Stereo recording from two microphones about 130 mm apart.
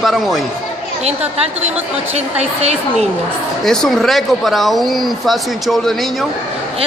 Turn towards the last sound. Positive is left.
turn(degrees=0)  # may be behind; listen again after turning